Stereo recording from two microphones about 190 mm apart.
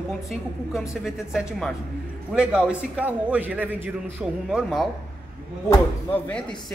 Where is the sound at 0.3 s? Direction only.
Centre (ahead or behind).